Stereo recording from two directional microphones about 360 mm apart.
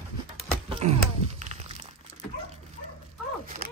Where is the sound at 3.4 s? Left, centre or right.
Centre.